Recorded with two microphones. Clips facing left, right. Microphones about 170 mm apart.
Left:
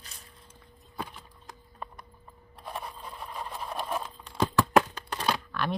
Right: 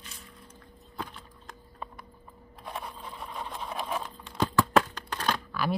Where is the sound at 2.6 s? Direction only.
5° left (ahead or behind).